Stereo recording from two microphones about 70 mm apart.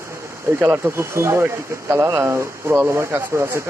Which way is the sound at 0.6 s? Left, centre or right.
Right.